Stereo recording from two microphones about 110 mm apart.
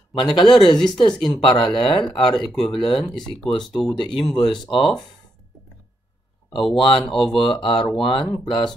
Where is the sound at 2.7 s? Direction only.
50° left (ahead or behind).